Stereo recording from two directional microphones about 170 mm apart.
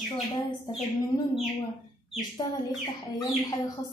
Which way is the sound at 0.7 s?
30° left (ahead or behind).